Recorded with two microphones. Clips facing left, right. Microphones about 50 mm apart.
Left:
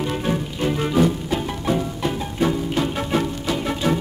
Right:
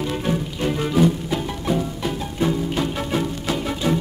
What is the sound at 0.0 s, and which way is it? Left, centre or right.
Music, centre.